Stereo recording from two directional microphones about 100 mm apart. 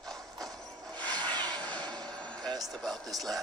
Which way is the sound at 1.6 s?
15° left (ahead or behind).